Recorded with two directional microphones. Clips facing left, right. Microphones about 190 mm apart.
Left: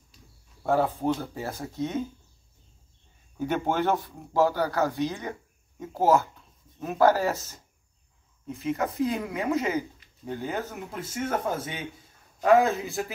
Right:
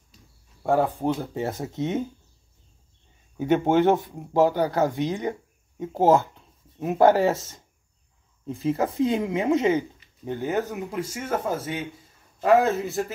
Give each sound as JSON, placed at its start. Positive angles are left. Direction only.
{"t": 0.7, "sound": "speech", "side_deg": -15}
{"t": 3.4, "sound": "speech", "side_deg": -20}
{"t": 7.3, "sound": "a man's voice", "side_deg": 0}
{"t": 8.5, "sound": "a man's voice", "side_deg": -30}